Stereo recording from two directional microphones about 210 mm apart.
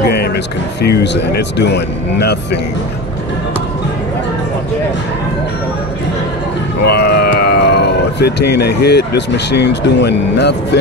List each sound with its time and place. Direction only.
0.8 s speech: 50° left (ahead or behind)
6.8 s speech: 50° left (ahead or behind)